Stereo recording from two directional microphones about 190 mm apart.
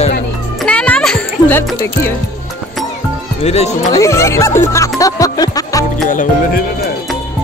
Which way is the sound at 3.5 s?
35° left (ahead or behind).